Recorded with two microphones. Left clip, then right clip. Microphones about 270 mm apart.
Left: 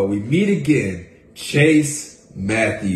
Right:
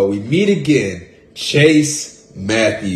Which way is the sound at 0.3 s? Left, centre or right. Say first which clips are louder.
Right 3 dB; centre.